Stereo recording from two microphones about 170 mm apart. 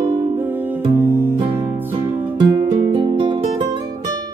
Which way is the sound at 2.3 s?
25° right (ahead or behind).